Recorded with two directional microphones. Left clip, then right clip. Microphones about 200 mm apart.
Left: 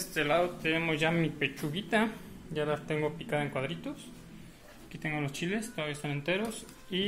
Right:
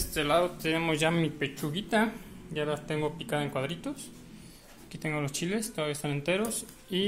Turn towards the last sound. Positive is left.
turn(degrees=-25)  # may be behind; listen again after turning